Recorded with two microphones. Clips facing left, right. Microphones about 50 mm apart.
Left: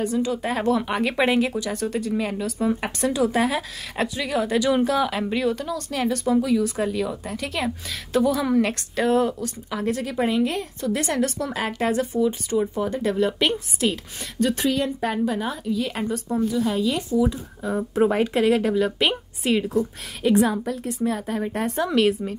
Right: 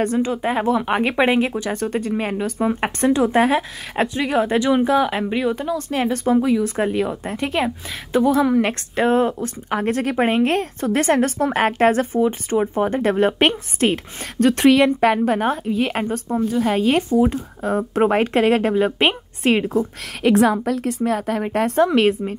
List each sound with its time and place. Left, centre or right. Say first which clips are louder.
0.2 s a woman's voice: right 3 dB; right
6.6 s a woman's voice: right 4 dB; right
9.7 s a woman's voice: right 6 dB; right
14.4 s speech: right 8 dB; right
15.2 s a woman's voice: right 6 dB; right
20.2 s a woman's voice: right 4 dB; right
21.0 s a woman's voice: right 1 dB; right
21.8 s a woman's voice: right 4 dB; right